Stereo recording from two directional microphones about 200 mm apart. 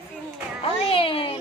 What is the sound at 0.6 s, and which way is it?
Speech, 25° left (ahead or behind).